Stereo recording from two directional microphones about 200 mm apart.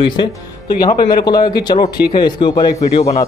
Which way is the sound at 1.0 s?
20° left (ahead or behind).